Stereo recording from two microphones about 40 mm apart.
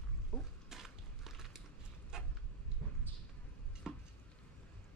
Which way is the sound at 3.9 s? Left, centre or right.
Centre.